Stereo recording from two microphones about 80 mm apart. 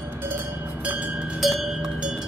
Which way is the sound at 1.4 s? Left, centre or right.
Centre.